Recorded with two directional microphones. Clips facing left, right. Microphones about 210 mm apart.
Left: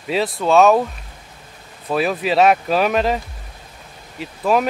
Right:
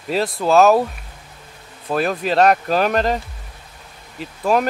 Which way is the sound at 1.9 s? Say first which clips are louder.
Left 1 dB; centre (ahead or behind).